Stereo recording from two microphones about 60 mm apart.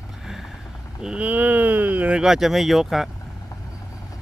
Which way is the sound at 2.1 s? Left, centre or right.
Centre.